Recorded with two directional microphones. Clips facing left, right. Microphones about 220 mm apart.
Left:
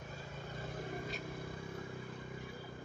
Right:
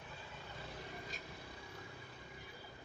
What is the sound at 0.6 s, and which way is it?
Vehicle, 50° left (ahead or behind).